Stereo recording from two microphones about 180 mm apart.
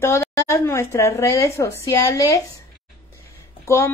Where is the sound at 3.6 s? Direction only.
15° left (ahead or behind).